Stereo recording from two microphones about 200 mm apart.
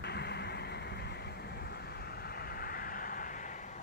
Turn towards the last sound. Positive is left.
turn(degrees=40)  # may be behind; listen again after turning